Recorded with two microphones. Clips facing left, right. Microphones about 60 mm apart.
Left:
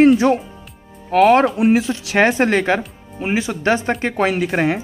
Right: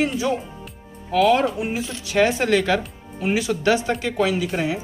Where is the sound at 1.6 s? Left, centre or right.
Left.